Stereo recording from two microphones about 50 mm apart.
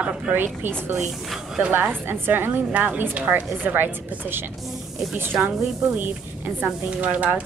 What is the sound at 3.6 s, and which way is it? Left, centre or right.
A woman's voice, right.